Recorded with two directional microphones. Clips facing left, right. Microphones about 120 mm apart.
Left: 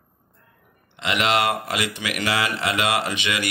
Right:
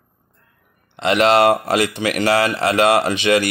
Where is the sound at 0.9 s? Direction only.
40° right (ahead or behind).